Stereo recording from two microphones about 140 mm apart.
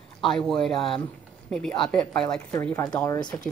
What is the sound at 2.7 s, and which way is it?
Speech, 25° left (ahead or behind).